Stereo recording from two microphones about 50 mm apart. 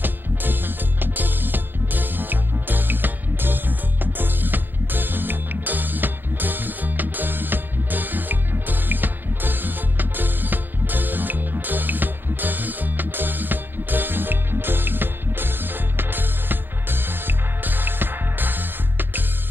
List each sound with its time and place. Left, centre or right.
0.0 s music: right